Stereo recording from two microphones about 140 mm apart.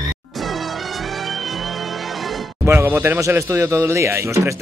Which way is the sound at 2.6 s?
20° right (ahead or behind).